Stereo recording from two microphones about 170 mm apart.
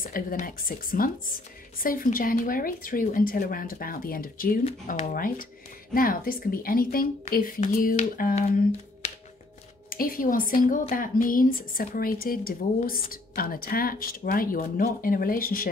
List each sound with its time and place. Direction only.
0.0 s a woman's voice: 55° left (ahead or behind)
9.8 s a woman's voice: 55° left (ahead or behind)